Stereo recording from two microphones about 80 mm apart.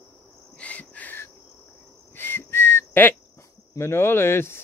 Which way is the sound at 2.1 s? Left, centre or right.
Left.